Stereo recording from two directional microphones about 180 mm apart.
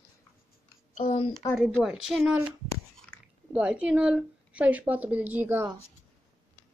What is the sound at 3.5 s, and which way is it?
A woman's voice, 10° right (ahead or behind).